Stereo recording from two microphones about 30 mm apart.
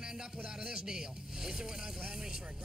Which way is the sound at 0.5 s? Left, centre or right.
Right.